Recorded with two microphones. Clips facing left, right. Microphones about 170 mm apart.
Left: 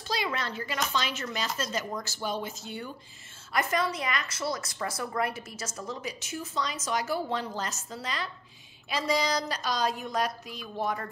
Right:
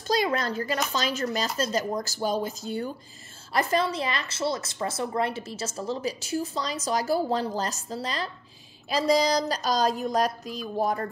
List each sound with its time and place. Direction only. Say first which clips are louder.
0.1 s a woman's voice: right 7 dB; 40° right (ahead or behind)